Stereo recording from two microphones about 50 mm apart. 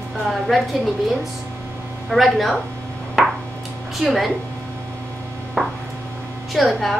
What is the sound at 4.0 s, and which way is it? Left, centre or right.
Speech, centre.